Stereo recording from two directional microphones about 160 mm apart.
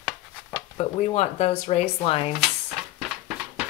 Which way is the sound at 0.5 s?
35° left (ahead or behind).